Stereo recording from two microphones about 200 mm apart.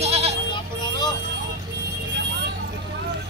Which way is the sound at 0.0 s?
30° right (ahead or behind).